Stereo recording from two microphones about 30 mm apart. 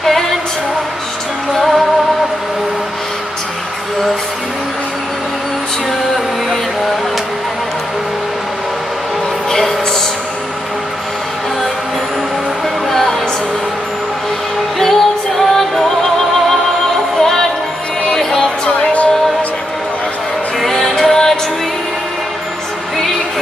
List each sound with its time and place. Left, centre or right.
1.5 s music: centre
9.5 s a sound: centre
14.8 s music: centre
18.7 s music: left
20.6 s music: centre